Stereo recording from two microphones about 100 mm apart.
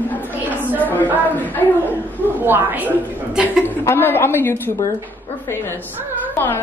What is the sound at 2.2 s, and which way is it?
Speech, 20° right (ahead or behind).